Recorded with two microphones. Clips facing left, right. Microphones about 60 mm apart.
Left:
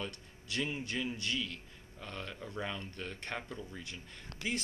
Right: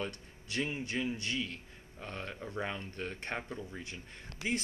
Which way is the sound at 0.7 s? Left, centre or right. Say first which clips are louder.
Right 2 dB; right.